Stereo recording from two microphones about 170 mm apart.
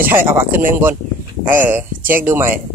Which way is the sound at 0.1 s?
15° right (ahead or behind).